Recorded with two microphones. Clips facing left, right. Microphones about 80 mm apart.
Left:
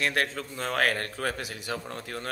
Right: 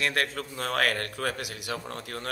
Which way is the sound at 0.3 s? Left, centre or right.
Right.